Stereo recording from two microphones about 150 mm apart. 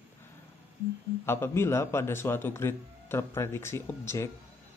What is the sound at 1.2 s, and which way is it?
Speech, 15° left (ahead or behind).